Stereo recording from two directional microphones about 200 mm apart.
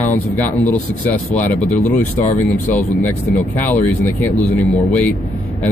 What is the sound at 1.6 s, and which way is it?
Speech, 35° left (ahead or behind).